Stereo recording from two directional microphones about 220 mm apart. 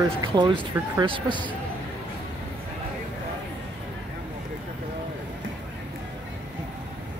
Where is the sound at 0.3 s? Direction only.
20° right (ahead or behind).